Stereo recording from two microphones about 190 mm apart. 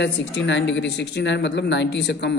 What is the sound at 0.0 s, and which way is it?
Speech, 70° left (ahead or behind).